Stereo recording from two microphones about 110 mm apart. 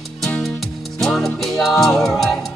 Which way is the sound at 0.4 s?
5° left (ahead or behind).